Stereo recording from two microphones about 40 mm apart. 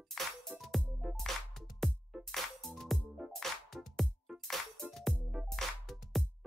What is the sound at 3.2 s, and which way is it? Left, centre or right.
Music, right.